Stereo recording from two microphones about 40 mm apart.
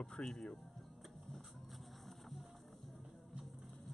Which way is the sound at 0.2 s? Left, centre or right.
Centre.